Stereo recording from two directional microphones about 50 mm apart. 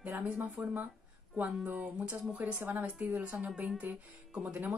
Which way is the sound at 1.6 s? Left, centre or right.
Right.